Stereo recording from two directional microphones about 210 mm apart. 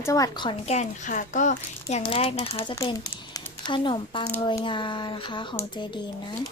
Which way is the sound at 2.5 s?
15° left (ahead or behind).